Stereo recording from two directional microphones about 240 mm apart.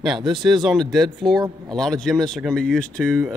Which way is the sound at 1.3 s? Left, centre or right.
Centre.